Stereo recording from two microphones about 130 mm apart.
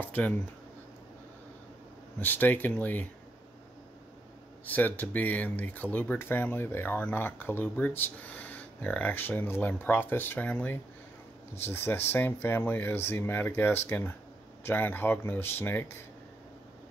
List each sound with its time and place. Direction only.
0.0 s a sound: 15° left (ahead or behind)
2.1 s speech: 15° left (ahead or behind)
4.6 s speech: 15° left (ahead or behind)